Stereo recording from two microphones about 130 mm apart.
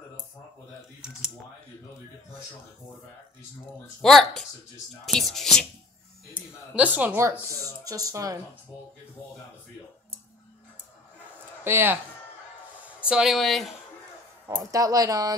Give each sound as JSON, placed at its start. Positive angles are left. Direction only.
{"t": 1.0, "sound": "typing", "side_deg": -5}
{"t": 4.0, "sound": "speech", "side_deg": 5}
{"t": 6.7, "sound": "speech", "side_deg": -10}
{"t": 7.4, "sound": "speech", "side_deg": -25}
{"t": 11.6, "sound": "speech", "side_deg": -15}
{"t": 13.1, "sound": "speech", "side_deg": 0}
{"t": 14.6, "sound": "speech", "side_deg": -25}